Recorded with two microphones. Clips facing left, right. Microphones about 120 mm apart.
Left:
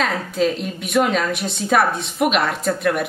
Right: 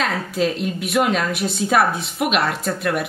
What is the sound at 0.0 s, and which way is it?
A woman's voice, centre (ahead or behind).